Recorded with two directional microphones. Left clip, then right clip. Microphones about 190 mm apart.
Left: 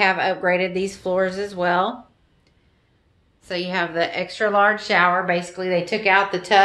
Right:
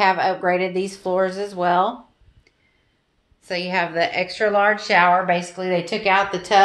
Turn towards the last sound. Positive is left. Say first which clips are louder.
# even
turn(degrees=20)  # may be behind; listen again after turning